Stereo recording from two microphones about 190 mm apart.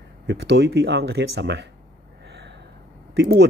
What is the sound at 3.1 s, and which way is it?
Speech, 60° right (ahead or behind).